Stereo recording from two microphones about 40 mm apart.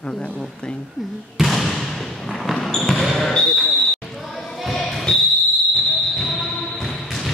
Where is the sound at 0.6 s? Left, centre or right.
Left.